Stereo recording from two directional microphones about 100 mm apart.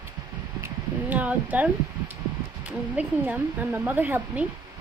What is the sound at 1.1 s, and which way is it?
Speech, 15° right (ahead or behind).